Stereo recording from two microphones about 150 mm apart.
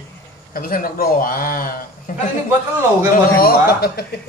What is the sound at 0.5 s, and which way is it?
A man's voice, 70° left (ahead or behind).